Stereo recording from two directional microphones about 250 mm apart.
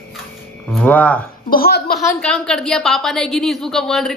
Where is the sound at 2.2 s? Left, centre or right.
Centre.